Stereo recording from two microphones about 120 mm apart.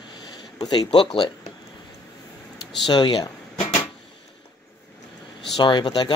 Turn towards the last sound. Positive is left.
turn(degrees=40)  # may be behind; listen again after turning